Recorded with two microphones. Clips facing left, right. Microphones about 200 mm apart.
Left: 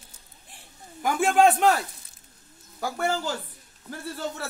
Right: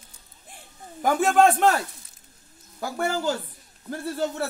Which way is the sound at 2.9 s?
40° right (ahead or behind).